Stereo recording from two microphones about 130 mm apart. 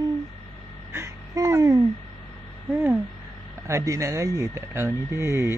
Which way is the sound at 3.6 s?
20° right (ahead or behind).